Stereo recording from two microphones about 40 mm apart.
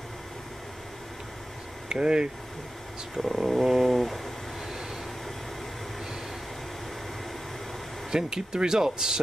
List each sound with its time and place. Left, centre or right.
1.9 s speech: right
3.2 s dog: centre
8.1 s speech: centre